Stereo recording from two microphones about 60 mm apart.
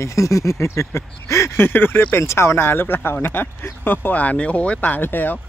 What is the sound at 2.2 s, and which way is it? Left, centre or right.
Speech, left.